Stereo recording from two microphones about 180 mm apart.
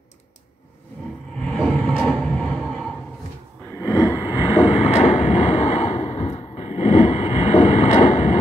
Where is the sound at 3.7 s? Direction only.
20° left (ahead or behind).